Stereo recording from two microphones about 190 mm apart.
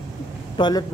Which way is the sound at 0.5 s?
25° left (ahead or behind).